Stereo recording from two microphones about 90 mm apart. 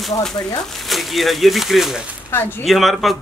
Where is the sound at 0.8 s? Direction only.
Centre (ahead or behind).